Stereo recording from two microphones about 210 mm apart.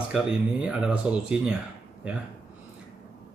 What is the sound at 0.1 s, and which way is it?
Speech, 5° right (ahead or behind).